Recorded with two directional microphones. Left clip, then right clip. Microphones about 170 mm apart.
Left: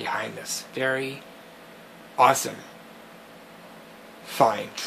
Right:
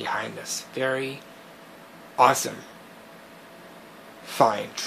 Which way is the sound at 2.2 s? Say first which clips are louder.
Even; 5° right (ahead or behind).